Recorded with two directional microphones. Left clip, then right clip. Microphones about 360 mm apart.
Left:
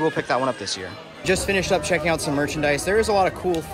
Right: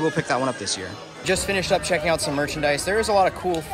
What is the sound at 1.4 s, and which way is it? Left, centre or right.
A man's voice, centre.